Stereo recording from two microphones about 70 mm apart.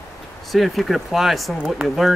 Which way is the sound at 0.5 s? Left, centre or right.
Centre.